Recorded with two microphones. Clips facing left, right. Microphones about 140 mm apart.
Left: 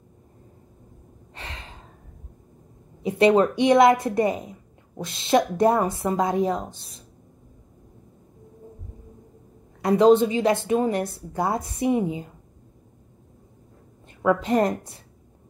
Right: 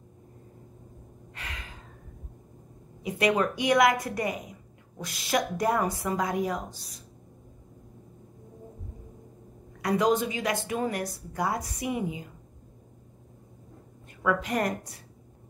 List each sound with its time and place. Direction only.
1.3 s gasp: 30° left (ahead or behind)
3.0 s a woman's voice: 25° left (ahead or behind)
9.8 s a woman's voice: 25° left (ahead or behind)
14.2 s a woman's voice: 25° left (ahead or behind)